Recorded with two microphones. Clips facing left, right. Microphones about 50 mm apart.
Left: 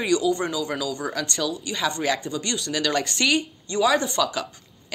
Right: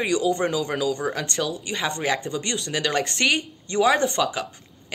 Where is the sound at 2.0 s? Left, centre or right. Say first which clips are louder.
Even; right.